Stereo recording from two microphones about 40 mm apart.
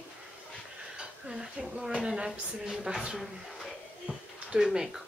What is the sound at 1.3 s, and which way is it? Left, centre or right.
Speech, centre.